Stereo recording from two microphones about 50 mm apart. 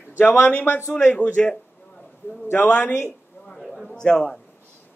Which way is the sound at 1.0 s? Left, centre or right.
Left.